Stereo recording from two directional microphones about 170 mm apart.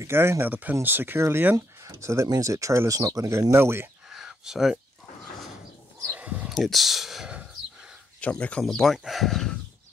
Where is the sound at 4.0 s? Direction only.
Centre (ahead or behind).